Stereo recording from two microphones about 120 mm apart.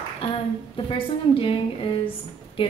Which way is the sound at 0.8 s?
50° left (ahead or behind).